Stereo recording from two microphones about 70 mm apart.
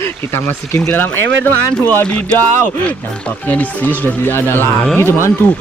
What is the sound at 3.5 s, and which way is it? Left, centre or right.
Speech, left.